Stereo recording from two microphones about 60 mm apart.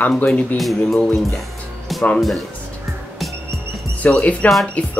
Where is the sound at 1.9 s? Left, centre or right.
Centre.